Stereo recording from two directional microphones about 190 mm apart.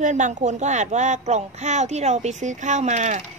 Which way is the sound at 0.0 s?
40° right (ahead or behind).